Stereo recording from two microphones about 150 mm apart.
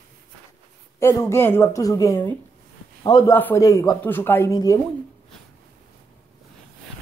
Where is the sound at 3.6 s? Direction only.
25° left (ahead or behind).